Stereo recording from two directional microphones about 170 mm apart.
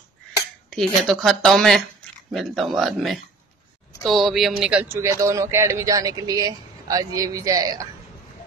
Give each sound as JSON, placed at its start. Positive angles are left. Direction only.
{"t": 0.7, "sound": "speech", "side_deg": 0}
{"t": 2.0, "sound": "a sound", "side_deg": 5}
{"t": 2.3, "sound": "a man's voice", "side_deg": 0}